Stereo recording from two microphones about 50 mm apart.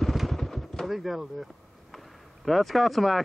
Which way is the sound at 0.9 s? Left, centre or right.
Centre.